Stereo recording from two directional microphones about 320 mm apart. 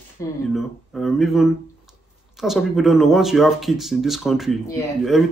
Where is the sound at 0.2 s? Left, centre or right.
Centre.